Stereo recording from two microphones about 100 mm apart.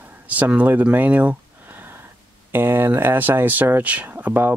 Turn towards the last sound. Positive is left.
turn(degrees=-20)  # may be behind; listen again after turning